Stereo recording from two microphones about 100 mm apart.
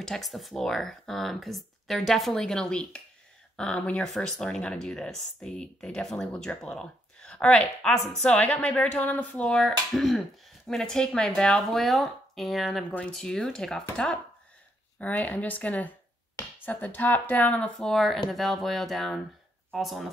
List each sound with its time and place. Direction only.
0.0 s speech: centre (ahead or behind)
15.0 s speech: 15° left (ahead or behind)
17.7 s speech: centre (ahead or behind)